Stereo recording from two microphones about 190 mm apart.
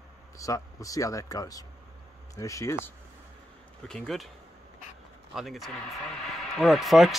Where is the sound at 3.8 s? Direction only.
Centre (ahead or behind).